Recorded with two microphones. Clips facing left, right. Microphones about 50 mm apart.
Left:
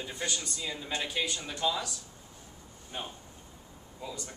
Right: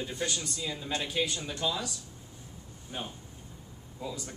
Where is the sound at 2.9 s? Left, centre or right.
Centre.